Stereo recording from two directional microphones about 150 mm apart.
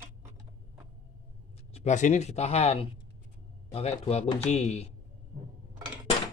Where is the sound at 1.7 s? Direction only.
55° left (ahead or behind).